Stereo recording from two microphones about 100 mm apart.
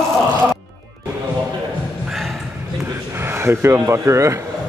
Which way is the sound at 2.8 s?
25° right (ahead or behind).